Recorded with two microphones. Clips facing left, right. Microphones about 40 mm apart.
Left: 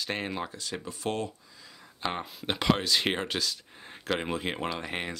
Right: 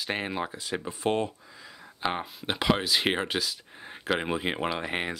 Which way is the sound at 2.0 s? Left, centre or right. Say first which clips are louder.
Right 2 dB; centre.